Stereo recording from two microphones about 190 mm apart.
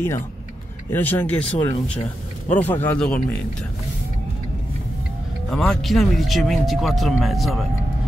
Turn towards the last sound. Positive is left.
turn(degrees=0)  # may be behind; listen again after turning